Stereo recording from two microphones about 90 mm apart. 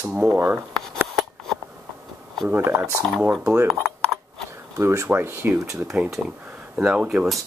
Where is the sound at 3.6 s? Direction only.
5° left (ahead or behind).